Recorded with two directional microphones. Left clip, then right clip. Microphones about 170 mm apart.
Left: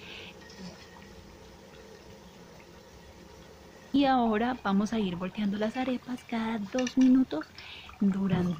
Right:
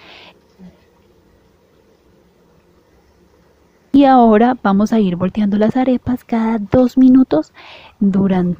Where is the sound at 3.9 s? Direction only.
50° right (ahead or behind).